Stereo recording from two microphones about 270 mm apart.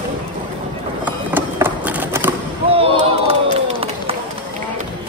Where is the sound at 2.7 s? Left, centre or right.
Right.